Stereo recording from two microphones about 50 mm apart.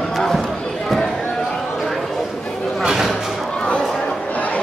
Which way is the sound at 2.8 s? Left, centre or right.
Centre.